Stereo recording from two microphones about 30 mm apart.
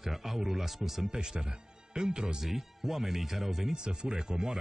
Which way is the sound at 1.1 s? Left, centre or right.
Right.